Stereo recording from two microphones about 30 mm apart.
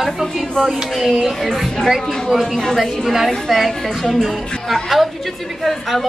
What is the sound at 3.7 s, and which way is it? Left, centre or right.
A woman's voice, centre.